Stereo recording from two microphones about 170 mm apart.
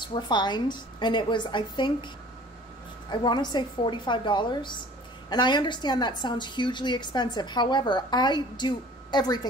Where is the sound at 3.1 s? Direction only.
25° left (ahead or behind).